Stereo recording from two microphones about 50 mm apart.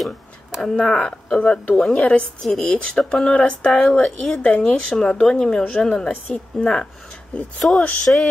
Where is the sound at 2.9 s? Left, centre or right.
Centre.